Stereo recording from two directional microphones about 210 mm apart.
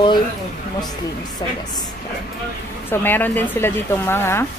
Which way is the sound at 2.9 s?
10° left (ahead or behind).